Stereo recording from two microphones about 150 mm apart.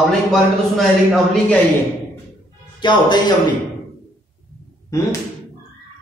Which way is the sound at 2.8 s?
30° left (ahead or behind).